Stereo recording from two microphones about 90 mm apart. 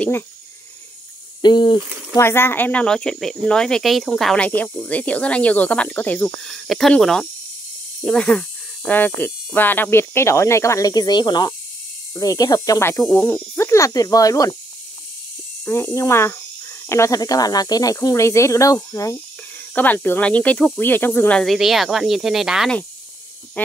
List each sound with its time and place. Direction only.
1.4 s mechanisms: 60° left (ahead or behind)
2.1 s speech: 25° left (ahead or behind); by 4.4 s 5° left (ahead or behind)
4.4 s speech: 15° left (ahead or behind)
6.4 s speech: 5° left (ahead or behind); by 12.8 s 40° left (ahead or behind)
13.0 s speech: 10° left (ahead or behind)
13.3 s speech: 30° left (ahead or behind)
15.7 s speech: 30° left (ahead or behind)
17.2 s speech: 45° left (ahead or behind)
18.0 s speech: 35° left (ahead or behind)
19.7 s speech: 20° left (ahead or behind)
21.3 s speech: 10° left (ahead or behind)
21.5 s speech: 5° right (ahead or behind)